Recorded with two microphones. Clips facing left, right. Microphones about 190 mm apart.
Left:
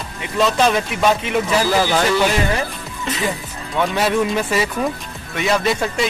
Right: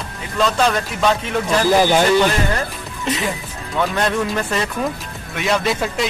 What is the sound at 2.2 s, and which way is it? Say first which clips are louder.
Speech: even; 5° left (ahead or behind).